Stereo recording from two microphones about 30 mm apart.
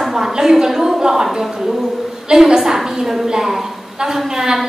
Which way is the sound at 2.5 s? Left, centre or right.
Centre.